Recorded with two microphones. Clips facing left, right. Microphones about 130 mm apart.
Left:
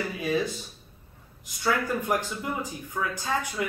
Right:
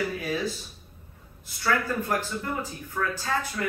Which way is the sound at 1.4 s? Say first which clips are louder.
Even; 15° left (ahead or behind).